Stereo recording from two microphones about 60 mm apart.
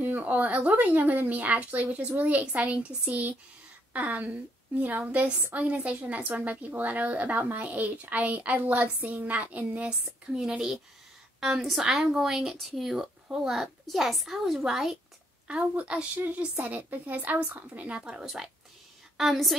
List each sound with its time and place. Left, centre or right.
0.0 s a woman's voice: right; by 15.0 s centre
15.4 s a woman's voice: right
16.2 s a woman's voice: right; by 19.5 s centre